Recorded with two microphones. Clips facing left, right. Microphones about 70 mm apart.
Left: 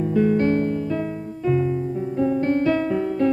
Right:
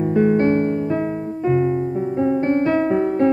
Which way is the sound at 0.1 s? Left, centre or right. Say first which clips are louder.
Right 3 dB; right.